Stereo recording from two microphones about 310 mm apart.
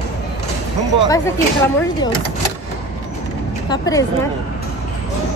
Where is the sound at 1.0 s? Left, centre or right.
Centre.